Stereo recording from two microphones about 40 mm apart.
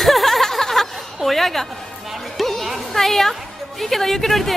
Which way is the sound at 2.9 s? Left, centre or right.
Centre.